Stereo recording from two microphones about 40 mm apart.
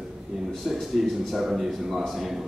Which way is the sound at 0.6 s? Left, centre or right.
Centre.